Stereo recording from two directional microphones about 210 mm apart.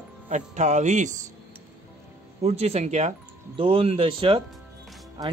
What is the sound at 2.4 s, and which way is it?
Speech, 30° right (ahead or behind).